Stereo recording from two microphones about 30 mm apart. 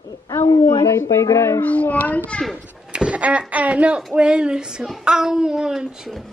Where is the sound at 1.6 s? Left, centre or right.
Left.